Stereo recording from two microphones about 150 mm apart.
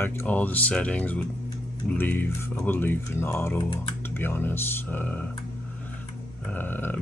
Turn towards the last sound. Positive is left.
turn(degrees=10)  # may be behind; listen again after turning